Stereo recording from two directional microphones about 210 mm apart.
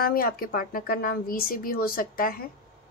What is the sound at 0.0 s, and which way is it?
Speech, 45° left (ahead or behind).